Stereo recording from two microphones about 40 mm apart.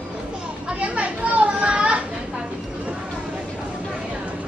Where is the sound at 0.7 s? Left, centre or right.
Right.